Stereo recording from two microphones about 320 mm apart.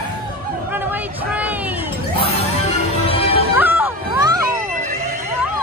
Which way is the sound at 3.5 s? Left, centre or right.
Centre.